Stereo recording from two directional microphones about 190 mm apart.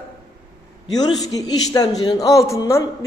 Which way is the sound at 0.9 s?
20° left (ahead or behind).